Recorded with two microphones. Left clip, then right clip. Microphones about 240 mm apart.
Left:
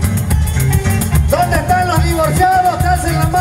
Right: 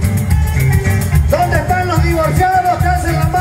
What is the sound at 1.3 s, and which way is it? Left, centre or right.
Music, left.